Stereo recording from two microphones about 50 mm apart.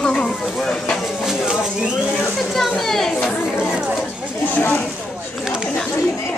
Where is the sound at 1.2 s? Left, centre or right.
Centre.